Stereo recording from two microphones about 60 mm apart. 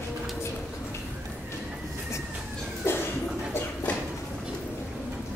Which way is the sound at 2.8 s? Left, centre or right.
Left.